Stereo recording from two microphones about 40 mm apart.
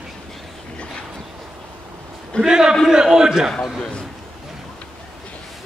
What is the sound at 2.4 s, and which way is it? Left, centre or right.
A man's voice, centre.